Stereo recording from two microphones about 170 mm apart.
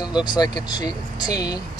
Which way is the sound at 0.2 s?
25° left (ahead or behind).